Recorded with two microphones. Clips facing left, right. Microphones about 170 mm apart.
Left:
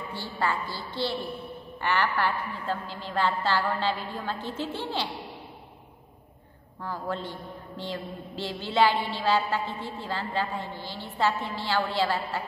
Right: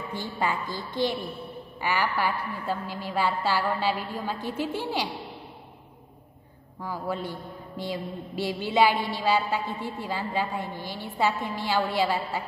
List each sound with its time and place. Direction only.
0.1 s a man's voice: 15° right (ahead or behind)
6.8 s a man's voice: 10° right (ahead or behind)